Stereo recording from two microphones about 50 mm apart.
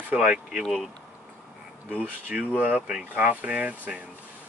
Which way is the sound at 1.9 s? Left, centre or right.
Right.